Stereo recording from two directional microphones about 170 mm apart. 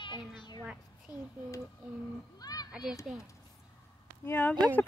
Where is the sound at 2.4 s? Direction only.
25° left (ahead or behind).